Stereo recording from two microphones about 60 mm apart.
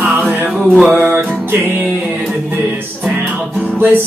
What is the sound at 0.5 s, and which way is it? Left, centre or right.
Music, centre.